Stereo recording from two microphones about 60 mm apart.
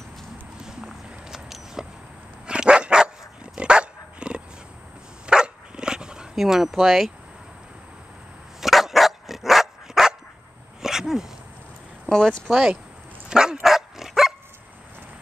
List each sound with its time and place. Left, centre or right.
0.6 s a sound: centre
2.4 s dog: centre
6.3 s speech: centre
8.5 s dog: centre
10.8 s sneeze: centre
12.1 s speech: centre
12.4 s speech: centre
13.3 s dog: centre